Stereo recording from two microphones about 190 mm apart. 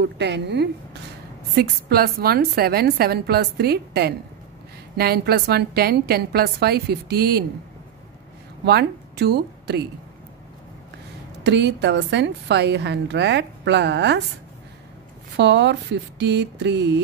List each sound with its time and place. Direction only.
0.0 s a woman's voice: 65° right (ahead or behind)
8.6 s a woman's voice: 60° right (ahead or behind)
11.4 s a woman's voice: 65° right (ahead or behind)
15.3 s a woman's voice: 70° right (ahead or behind)